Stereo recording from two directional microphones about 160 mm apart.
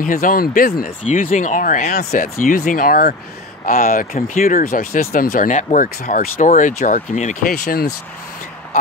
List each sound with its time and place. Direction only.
0.0 s speech: 60° left (ahead or behind)
5.5 s speech: 50° left (ahead or behind)